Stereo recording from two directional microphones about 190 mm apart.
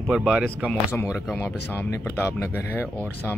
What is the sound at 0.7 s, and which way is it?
Speech, 10° left (ahead or behind).